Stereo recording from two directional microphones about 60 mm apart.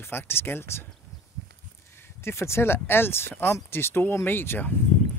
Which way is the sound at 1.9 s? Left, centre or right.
Left.